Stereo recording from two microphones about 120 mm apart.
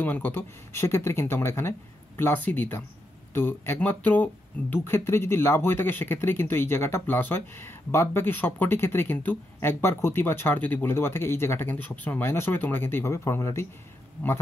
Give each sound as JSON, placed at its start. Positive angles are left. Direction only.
{"t": 0.0, "sound": "speech", "side_deg": 15}